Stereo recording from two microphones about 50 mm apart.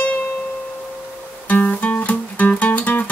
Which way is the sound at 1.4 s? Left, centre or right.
Left.